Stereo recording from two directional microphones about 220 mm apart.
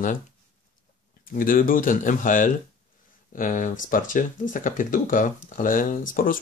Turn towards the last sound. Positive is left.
turn(degrees=40)  # may be behind; listen again after turning